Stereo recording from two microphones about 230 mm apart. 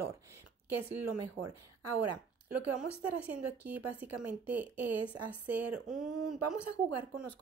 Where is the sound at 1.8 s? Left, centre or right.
Right.